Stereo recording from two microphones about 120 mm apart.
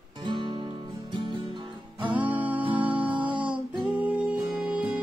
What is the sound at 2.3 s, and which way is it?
Music, 15° right (ahead or behind).